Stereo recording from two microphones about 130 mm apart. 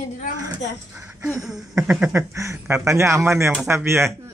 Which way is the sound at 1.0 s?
20° right (ahead or behind).